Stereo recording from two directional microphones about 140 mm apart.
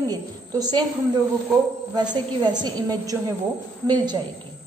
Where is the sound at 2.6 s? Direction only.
25° right (ahead or behind).